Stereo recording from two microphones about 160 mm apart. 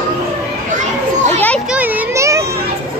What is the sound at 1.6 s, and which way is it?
Children playing, 10° right (ahead or behind).